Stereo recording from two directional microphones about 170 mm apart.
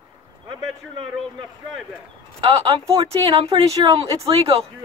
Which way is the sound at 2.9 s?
30° right (ahead or behind).